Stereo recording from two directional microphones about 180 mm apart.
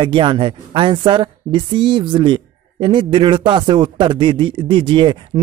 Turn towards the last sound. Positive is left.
turn(degrees=-25)  # may be behind; listen again after turning